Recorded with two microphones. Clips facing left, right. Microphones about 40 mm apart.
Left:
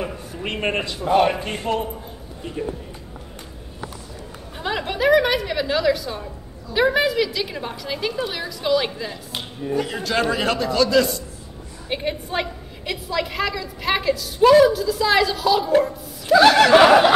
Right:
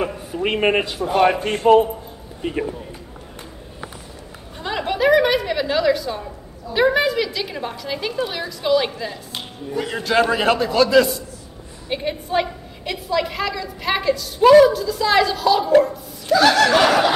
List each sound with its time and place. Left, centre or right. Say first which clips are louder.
0.0 s a sound: right 6 dB; centre
1.1 s a man's voice: right 1 dB; centre
1.6 s a man's voice: right 12 dB; right
4.6 s a woman's voice: right 2 dB; centre
11.9 s a woman's voice: right 3 dB; centre
16.3 s snicker: left 3 dB; centre